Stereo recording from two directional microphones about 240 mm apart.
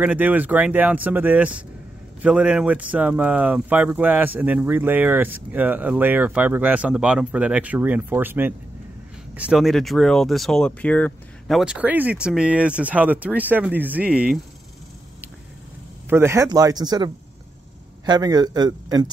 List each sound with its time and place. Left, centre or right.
0.0 s speech: centre
16.1 s speech: centre